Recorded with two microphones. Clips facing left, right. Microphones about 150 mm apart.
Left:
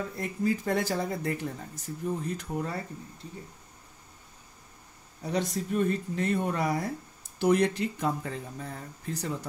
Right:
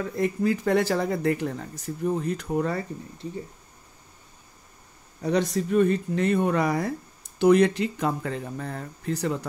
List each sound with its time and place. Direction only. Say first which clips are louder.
0.2 s speech: right 6 dB; 80° right
5.2 s speech: right 6 dB; 75° right (ahead or behind)